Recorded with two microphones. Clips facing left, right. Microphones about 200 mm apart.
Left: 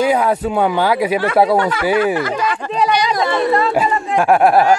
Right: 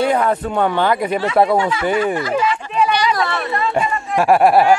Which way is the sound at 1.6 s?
60° left (ahead or behind).